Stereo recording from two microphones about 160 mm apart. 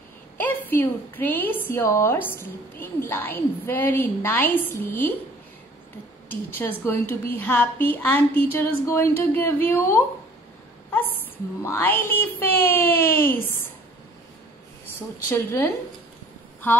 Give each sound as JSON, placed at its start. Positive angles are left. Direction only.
{"t": 0.4, "sound": "a woman's voice", "side_deg": 10}
{"t": 6.2, "sound": "speech", "side_deg": 15}
{"t": 11.6, "sound": "speech", "side_deg": 10}
{"t": 15.2, "sound": "speech", "side_deg": 15}